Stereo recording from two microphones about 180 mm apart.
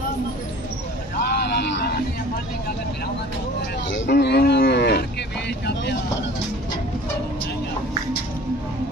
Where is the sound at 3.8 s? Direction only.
80° left; by 6.0 s 65° left (ahead or behind).